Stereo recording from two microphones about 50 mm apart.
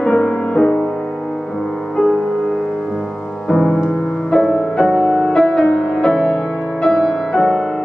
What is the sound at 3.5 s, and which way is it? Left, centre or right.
Music, centre.